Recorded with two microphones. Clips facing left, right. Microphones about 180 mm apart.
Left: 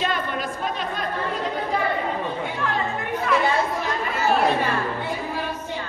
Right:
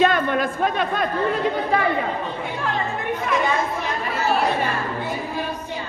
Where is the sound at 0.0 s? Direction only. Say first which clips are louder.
Right 7 dB; 55° right (ahead or behind).